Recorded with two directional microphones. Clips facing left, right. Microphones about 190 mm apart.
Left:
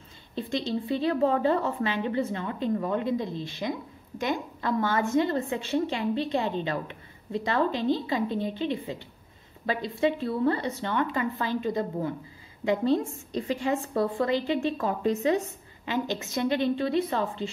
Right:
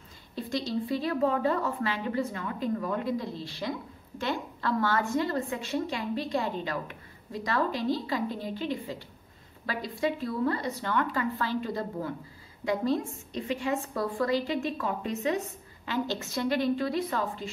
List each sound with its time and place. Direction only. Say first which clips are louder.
0.4 s a woman's voice: left 2 dB; 25° left (ahead or behind)
15.8 s a woman's voice: left 2 dB; 20° left (ahead or behind)